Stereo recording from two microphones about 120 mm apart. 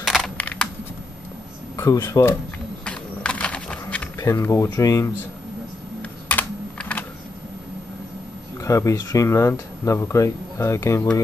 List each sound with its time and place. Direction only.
0.0 s a sound: centre (ahead or behind)
0.4 s computer keyboard: 10° left (ahead or behind)
1.8 s speech: 30° left (ahead or behind)
2.8 s a sound: 10° left (ahead or behind)
4.5 s speech: 30° left (ahead or behind)
6.2 s computer keyboard: 10° left (ahead or behind)
8.6 s speech: 25° left (ahead or behind)